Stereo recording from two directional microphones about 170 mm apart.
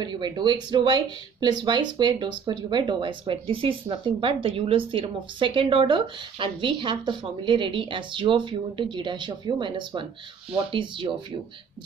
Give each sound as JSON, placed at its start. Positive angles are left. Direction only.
{"t": 0.0, "sound": "speech", "side_deg": -25}